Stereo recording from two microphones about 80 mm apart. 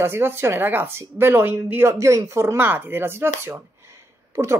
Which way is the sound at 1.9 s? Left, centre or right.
Right.